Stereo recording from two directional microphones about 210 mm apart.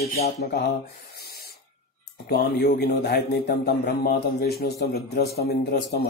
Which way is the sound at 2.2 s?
45° left (ahead or behind).